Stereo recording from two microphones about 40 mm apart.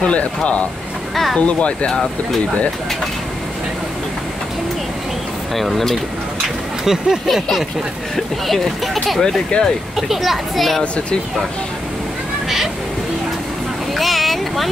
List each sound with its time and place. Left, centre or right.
0.0 s speech: left
5.5 s a child's voice: centre
6.8 s speech: centre
8.5 s a child's voice: centre
9.2 s speech: centre
9.9 s a child's voice: centre
13.9 s vehicle: centre